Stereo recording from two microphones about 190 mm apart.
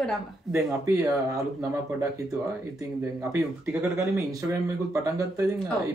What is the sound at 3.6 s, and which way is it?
Speech, 5° right (ahead or behind).